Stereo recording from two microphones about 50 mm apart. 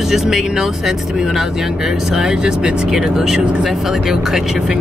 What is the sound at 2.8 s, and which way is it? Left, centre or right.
Speech, centre.